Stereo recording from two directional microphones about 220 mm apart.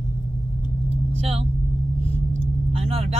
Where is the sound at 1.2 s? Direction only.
25° right (ahead or behind).